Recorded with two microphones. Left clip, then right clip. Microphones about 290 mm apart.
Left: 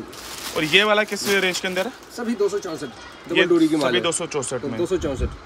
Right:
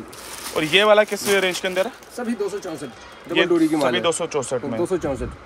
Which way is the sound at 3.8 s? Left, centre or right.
Centre.